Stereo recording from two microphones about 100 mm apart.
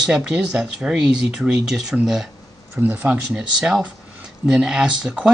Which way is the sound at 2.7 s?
15° right (ahead or behind).